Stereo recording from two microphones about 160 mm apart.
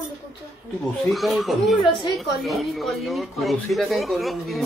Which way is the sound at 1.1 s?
Centre (ahead or behind).